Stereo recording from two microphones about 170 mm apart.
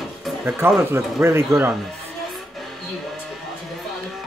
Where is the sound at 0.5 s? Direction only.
15° right (ahead or behind).